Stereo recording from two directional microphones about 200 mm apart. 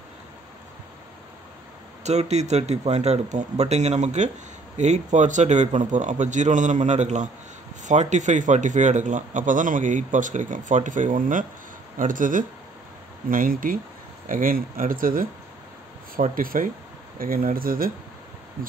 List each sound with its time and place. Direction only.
2.0 s a man's voice: 35° right (ahead or behind)